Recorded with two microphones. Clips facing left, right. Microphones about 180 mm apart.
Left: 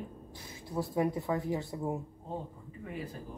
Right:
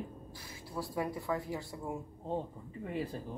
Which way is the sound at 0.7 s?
20° left (ahead or behind).